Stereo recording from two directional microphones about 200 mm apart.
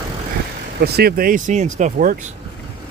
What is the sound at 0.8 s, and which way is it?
Speech, 50° right (ahead or behind).